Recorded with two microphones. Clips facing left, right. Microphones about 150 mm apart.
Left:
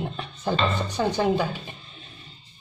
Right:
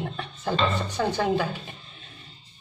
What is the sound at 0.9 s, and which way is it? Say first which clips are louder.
Speech: left 2 dB; 20° left (ahead or behind).